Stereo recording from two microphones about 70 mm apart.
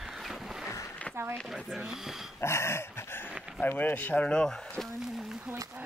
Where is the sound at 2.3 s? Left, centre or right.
Left.